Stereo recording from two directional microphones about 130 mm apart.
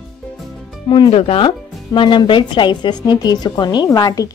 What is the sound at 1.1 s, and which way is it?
Speech, 45° left (ahead or behind).